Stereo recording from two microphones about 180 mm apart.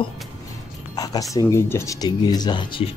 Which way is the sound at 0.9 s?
20° left (ahead or behind).